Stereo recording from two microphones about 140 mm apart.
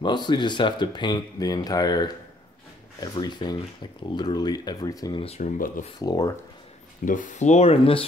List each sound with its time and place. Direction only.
0.0 s speech: 30° left (ahead or behind)
5.4 s speech: 65° left (ahead or behind)
5.9 s speech: 25° left (ahead or behind)
7.1 s speech: 70° left (ahead or behind); by 8.0 s 45° left (ahead or behind)